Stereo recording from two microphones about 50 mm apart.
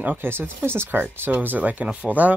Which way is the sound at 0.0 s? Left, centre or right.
Right.